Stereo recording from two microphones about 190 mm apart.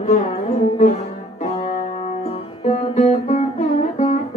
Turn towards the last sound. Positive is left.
turn(degrees=40)  # may be behind; listen again after turning